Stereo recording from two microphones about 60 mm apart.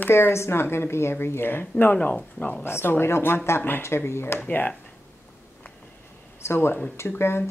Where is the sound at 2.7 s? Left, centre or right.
Left.